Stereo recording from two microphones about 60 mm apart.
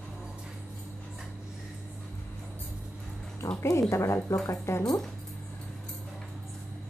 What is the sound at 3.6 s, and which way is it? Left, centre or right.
Speech, left.